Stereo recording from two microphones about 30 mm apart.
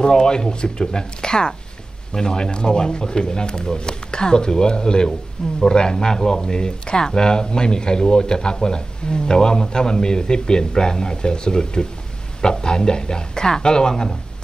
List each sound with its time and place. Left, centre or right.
0.0 s speech: left